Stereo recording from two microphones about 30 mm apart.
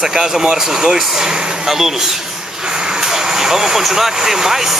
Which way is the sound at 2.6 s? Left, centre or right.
Right.